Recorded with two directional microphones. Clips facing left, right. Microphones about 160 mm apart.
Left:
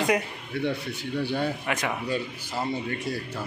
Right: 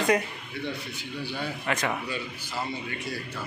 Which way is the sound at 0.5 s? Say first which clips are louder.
Left 6 dB; 60° left (ahead or behind).